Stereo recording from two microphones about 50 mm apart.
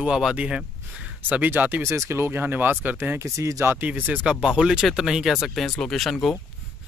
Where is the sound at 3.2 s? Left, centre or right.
Right.